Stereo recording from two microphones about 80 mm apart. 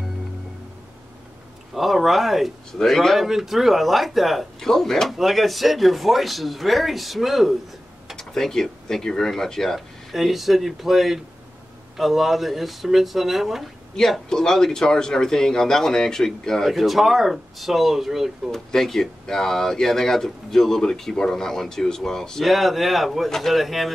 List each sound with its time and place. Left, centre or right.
1.8 s speech: centre